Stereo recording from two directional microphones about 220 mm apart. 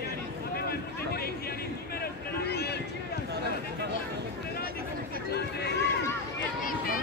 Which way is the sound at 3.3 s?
50° right (ahead or behind).